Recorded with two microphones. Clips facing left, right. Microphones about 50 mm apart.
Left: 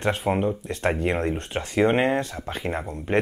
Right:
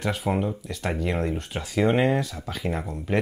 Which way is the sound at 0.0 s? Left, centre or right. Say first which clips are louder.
Left 3 dB; left.